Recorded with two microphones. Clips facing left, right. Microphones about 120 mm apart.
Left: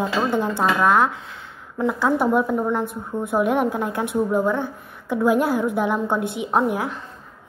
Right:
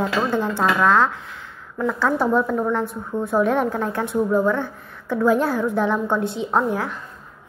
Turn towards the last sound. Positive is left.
turn(degrees=15)  # may be behind; listen again after turning